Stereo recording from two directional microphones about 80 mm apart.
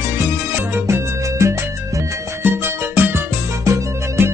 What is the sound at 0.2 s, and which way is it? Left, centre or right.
Music, right.